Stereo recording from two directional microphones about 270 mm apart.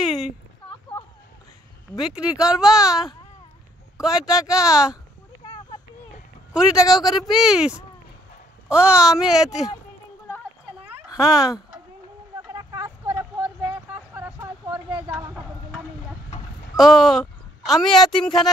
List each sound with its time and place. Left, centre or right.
2.0 s speech: centre
5.4 s a sound: centre
6.5 s speech: centre
11.1 s speech: centre
12.4 s vehicle: centre
16.7 s speech: centre